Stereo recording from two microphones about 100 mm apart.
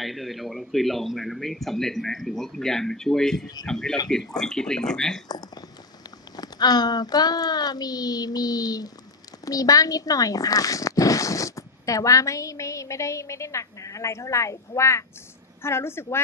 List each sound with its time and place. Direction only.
0.0 s speech: centre (ahead or behind)
5.3 s a woman's voice: 40° left (ahead or behind); by 16.2 s 25° left (ahead or behind)